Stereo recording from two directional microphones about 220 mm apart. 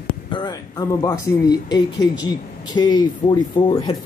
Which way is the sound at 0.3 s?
20° left (ahead or behind).